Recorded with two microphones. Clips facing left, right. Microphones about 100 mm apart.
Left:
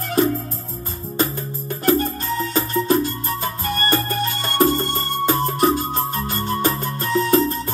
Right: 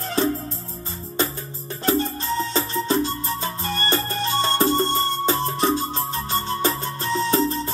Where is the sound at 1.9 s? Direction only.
25° right (ahead or behind).